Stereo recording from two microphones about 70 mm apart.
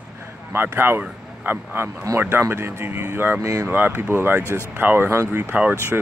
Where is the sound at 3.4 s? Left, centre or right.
Right.